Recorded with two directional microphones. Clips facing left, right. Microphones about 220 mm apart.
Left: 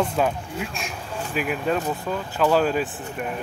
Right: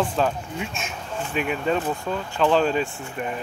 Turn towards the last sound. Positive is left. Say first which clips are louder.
# even
turn(degrees=5)  # may be behind; listen again after turning